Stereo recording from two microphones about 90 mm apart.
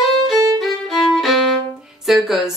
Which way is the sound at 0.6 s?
Centre (ahead or behind).